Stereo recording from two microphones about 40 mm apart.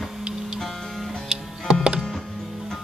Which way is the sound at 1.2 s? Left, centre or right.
Centre.